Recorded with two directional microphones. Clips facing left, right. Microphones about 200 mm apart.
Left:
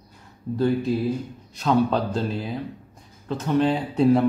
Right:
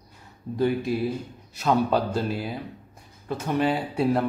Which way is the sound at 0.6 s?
10° right (ahead or behind).